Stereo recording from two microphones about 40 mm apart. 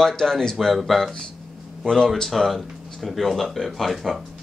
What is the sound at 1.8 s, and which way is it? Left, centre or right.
Speech, centre.